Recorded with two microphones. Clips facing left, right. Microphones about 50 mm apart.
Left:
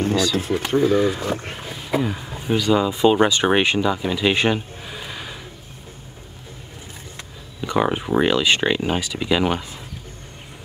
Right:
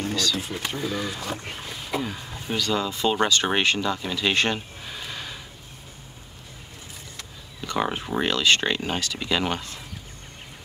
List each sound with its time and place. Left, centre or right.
0.1 s speech: centre
1.5 s boat: centre
1.8 s speech: centre
7.2 s speech: centre